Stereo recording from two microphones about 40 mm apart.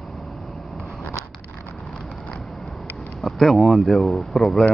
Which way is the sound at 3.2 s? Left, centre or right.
Centre.